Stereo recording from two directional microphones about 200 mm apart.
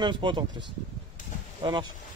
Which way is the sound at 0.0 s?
25° right (ahead or behind).